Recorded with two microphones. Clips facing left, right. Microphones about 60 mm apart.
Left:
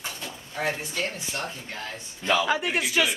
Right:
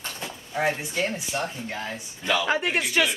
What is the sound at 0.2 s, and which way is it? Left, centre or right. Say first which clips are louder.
Speech: right 5 dB; centre.